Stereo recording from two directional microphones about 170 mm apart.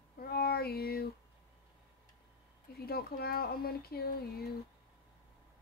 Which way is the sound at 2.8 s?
65° left (ahead or behind).